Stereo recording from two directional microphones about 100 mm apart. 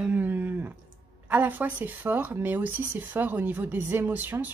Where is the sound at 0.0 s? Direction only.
15° right (ahead or behind).